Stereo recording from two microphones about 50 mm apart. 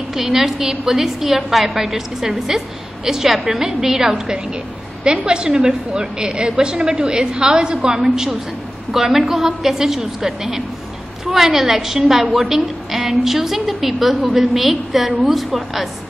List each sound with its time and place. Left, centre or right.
0.1 s a woman's voice: centre